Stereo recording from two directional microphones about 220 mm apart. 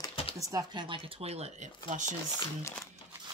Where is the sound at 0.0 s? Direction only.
25° left (ahead or behind).